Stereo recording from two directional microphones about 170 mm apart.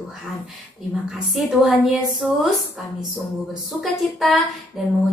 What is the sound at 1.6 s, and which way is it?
Speech, centre (ahead or behind).